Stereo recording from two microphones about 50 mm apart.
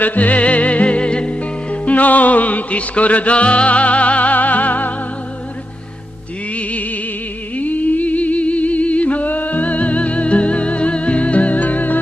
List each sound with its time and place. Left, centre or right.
0.0 s music: left
6.5 s music: left